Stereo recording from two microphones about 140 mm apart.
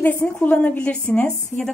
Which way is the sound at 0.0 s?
10° left (ahead or behind).